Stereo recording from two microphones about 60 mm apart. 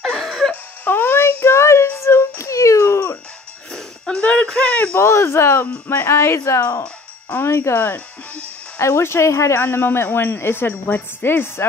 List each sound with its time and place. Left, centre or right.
0.0 s music: centre
0.5 s wail: left
1.6 s child singing: left
2.0 s music: left
3.7 s jingle bell: centre
4.5 s a sound: centre
4.9 s speech: left
7.7 s speech: left
8.7 s speech: left
9.6 s speech: left